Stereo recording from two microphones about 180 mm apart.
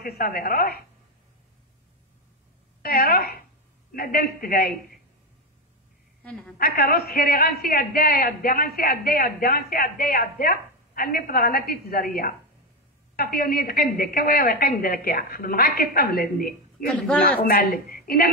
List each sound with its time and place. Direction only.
0.0 s a man's voice: 55° left (ahead or behind)
2.8 s a man's voice: 55° left (ahead or behind)
6.2 s a woman's voice: 5° left (ahead or behind)
6.6 s a man's voice: 60° left (ahead or behind)